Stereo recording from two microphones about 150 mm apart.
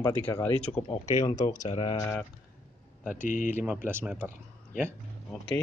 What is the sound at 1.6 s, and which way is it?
Speech, 40° left (ahead or behind).